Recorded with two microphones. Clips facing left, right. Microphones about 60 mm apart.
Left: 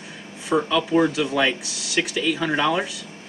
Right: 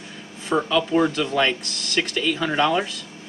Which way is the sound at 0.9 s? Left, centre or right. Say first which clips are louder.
Left 1 dB; centre.